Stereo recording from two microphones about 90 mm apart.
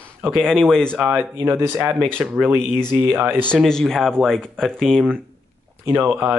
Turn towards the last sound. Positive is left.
turn(degrees=-15)  # may be behind; listen again after turning